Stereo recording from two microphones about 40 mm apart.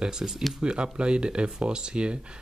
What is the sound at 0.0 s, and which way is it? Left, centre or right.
Speech, centre.